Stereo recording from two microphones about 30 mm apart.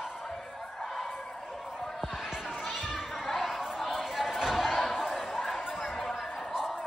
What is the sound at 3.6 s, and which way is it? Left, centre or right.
Chatter, centre.